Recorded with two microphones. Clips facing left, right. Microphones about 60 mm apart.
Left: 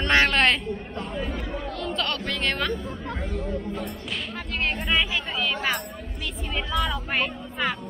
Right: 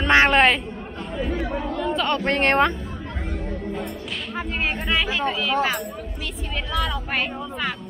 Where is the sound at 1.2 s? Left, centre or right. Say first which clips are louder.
Right 8 dB; centre.